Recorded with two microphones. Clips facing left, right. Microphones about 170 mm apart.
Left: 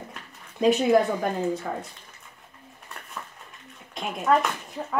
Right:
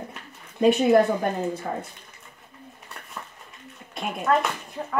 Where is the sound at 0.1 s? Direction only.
Centre (ahead or behind).